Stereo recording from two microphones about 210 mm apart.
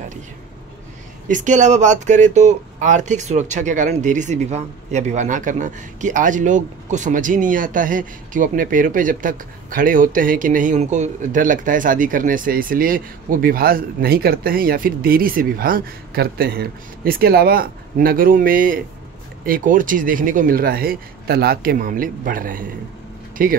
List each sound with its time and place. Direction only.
1.3 s speech: 35° right (ahead or behind)